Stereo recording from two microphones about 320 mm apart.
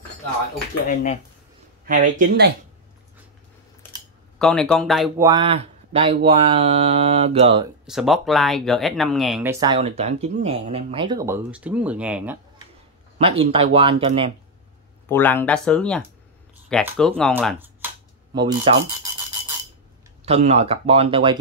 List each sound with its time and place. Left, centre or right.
0.8 s speech: left
1.9 s speech: right
4.4 s speech: centre
5.2 s speech: centre
7.8 s speech: centre
13.2 s speech: centre
15.0 s speech: centre
18.3 s speech: centre
20.2 s speech: centre